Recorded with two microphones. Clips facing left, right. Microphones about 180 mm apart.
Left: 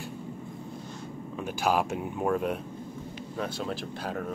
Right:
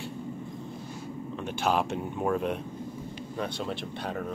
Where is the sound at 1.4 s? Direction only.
5° left (ahead or behind).